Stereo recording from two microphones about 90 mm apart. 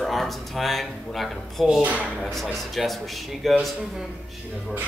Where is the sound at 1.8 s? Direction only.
15° right (ahead or behind).